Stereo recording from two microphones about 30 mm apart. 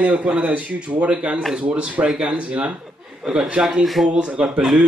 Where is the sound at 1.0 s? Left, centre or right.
Right.